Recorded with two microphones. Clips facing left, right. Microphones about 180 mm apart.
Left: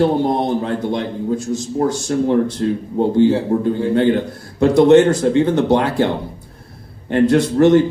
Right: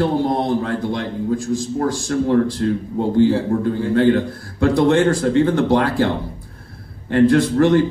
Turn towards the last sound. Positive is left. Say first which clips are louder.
# left 2 dB
turn(degrees=20)  # may be behind; listen again after turning